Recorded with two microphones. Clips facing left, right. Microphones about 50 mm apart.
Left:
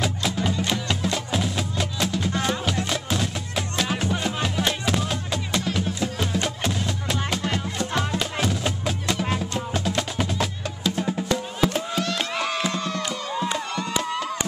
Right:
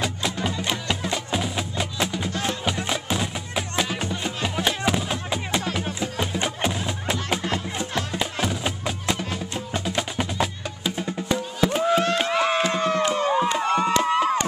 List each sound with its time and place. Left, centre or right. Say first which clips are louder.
0.0 s music: left 1 dB; centre
3.9 s music: left 3 dB; centre
4.2 s music: left 1 dB; centre
11.8 s a sound: right 7 dB; right
12.2 s crowd: right 4 dB; centre; by 13.5 s right
13.6 s a sound: right 7 dB; right
14.0 s crowd: right 7 dB; right